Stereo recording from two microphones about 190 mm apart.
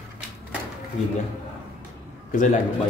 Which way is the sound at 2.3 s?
40° left (ahead or behind).